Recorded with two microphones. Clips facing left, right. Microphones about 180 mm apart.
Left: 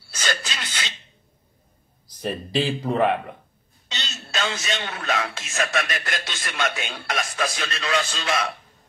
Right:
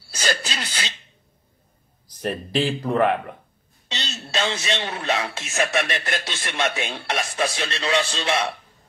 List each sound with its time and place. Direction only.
0.1 s speech: 35° right (ahead or behind)
2.2 s speech: 15° left (ahead or behind)
3.9 s a man's voice: 30° right (ahead or behind)